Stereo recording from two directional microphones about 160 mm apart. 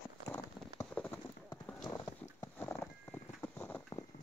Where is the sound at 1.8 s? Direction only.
20° left (ahead or behind).